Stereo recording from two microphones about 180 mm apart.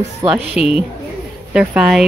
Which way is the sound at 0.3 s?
5° right (ahead or behind).